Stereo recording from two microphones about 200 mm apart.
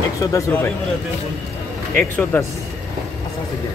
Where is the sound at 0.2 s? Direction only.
15° left (ahead or behind).